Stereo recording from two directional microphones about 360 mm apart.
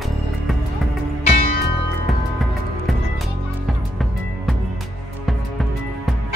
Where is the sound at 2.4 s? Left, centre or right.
Centre.